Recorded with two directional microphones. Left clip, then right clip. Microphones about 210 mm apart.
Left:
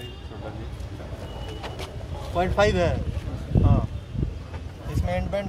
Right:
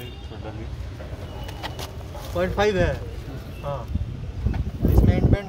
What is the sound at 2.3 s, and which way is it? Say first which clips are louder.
Speech: even; 20° left (ahead or behind).